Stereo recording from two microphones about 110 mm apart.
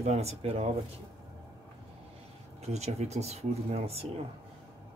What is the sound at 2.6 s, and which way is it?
Speech, 80° right.